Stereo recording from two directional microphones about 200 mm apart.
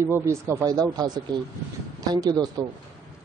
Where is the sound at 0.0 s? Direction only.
15° right (ahead or behind).